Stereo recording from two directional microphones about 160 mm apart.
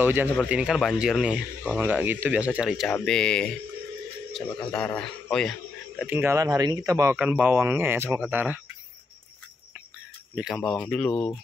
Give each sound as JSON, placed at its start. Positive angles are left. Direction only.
{"t": 0.0, "sound": "a man's voice", "side_deg": -10}
{"t": 6.0, "sound": "speech", "side_deg": -15}
{"t": 10.3, "sound": "speech", "side_deg": 0}